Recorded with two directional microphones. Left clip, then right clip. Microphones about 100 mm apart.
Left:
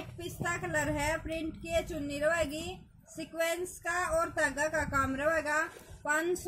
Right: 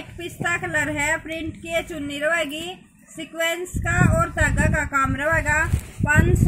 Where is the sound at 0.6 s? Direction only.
20° left (ahead or behind).